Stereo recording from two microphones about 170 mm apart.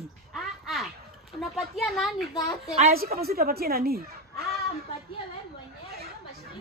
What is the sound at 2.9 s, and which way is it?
A woman's voice, 60° right (ahead or behind).